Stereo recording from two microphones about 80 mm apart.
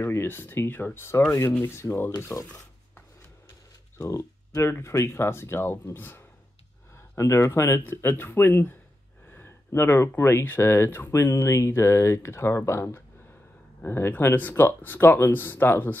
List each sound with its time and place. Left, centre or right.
0.0 s speech: left
4.0 s speech: left